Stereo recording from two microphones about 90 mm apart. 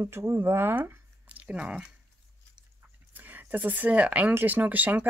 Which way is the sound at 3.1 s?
20° right (ahead or behind).